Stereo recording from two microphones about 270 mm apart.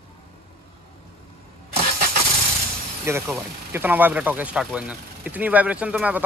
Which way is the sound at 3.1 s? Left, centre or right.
Centre.